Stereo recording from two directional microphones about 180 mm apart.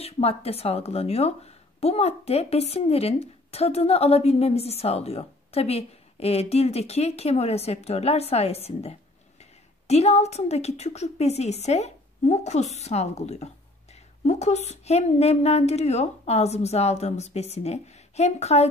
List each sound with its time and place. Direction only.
0.0 s a woman's voice: 35° left (ahead or behind)